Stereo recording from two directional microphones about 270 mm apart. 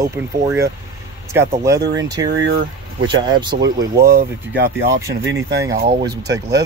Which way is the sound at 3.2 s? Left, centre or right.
Centre.